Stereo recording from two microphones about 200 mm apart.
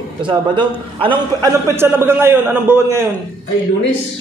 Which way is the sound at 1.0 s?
25° right (ahead or behind).